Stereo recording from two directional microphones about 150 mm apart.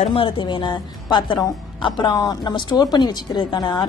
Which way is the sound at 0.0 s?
35° left (ahead or behind).